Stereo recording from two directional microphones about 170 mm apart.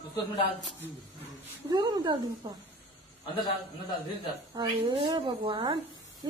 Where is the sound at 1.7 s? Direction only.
25° right (ahead or behind).